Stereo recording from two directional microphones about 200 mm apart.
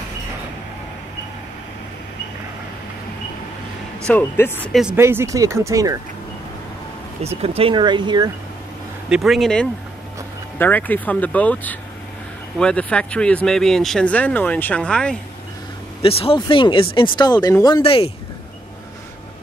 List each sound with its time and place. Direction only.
4.1 s speech: 10° left (ahead or behind)
4.7 s speech: 10° right (ahead or behind)
7.2 s speech: 30° right (ahead or behind)
9.1 s speech: centre (ahead or behind)
16.0 s speech: 30° left (ahead or behind)